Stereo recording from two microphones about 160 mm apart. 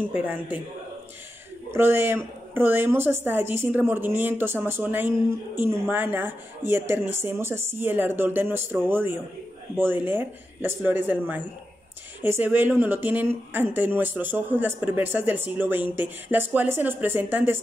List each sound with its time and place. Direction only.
0.0 s speech: 10° right (ahead or behind)
1.7 s speech: 15° right (ahead or behind)